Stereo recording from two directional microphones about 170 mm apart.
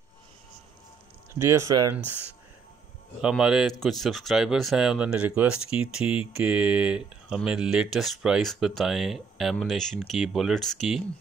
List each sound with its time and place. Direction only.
1.4 s speech: 15° right (ahead or behind)
3.2 s speech: 5° right (ahead or behind)